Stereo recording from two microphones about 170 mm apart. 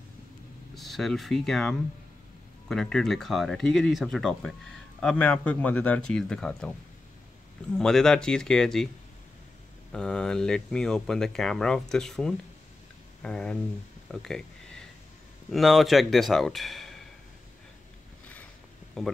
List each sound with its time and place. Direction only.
0.7 s speech: centre (ahead or behind)
7.7 s speech: 5° left (ahead or behind)
9.9 s speech: 5° left (ahead or behind)
14.1 s a sound: 5° left (ahead or behind)
15.5 s speech: centre (ahead or behind)
19.0 s speech: 5° left (ahead or behind)